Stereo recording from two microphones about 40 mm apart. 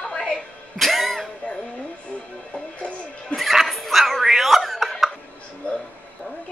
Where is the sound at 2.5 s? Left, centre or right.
Left.